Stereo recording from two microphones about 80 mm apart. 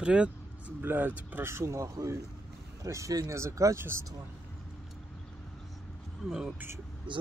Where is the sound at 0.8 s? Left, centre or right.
Right.